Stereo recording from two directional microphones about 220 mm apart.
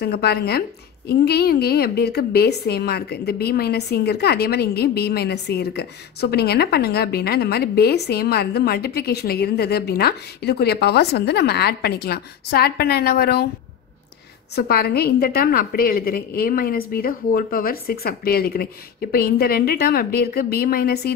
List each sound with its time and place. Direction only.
0.0 s a woman's voice: 45° left (ahead or behind)
14.5 s a woman's voice: 45° left (ahead or behind)